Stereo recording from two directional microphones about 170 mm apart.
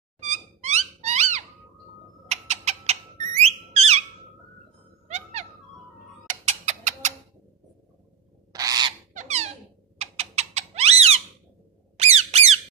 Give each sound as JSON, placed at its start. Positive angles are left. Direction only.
{"t": 0.2, "sound": "a sound", "side_deg": -40}
{"t": 5.0, "sound": "music", "side_deg": -40}
{"t": 6.2, "sound": "a sound", "side_deg": -45}
{"t": 8.5, "sound": "owl", "side_deg": -25}
{"t": 9.1, "sound": "squeak", "side_deg": -45}
{"t": 9.9, "sound": "cat", "side_deg": -40}
{"t": 12.0, "sound": "squawk", "side_deg": -40}